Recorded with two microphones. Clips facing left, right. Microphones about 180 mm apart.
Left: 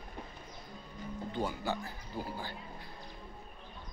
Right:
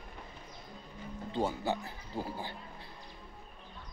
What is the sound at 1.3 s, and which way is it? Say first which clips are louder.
Music: right 3 dB; 25° right (ahead or behind).